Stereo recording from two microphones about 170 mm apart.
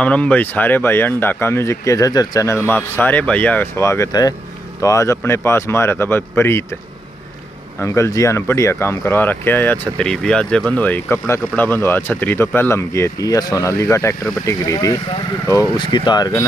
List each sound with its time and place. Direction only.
0.0 s speech: 5° left (ahead or behind)
7.8 s speech: 15° left (ahead or behind)